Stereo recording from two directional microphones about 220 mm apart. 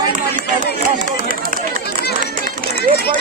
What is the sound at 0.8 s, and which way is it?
Run, 40° right (ahead or behind).